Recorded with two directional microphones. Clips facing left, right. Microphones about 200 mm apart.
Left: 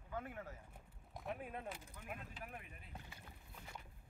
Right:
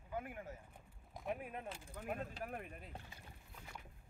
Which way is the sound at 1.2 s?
Centre (ahead or behind).